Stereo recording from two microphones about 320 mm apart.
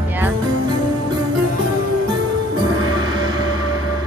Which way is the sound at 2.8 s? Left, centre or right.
Centre.